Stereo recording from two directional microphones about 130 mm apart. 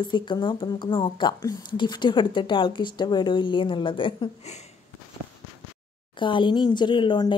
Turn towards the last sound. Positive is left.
turn(degrees=35)  # may be behind; listen again after turning